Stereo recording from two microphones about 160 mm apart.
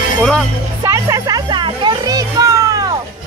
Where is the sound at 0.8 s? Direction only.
20° right (ahead or behind).